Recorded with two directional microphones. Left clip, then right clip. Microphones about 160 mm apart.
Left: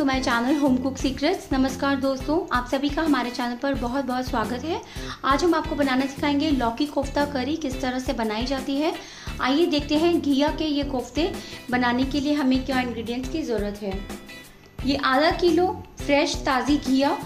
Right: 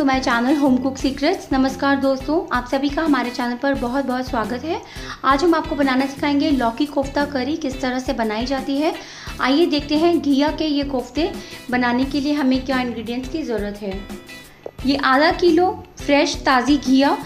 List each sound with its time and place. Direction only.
0.0 s a woman's voice: 5° right (ahead or behind)
14.9 s a woman's voice: 15° right (ahead or behind)